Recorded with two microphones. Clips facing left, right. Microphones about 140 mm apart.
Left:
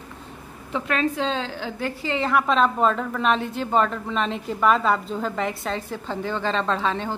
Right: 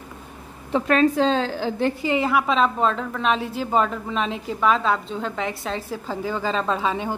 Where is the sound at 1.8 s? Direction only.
15° right (ahead or behind).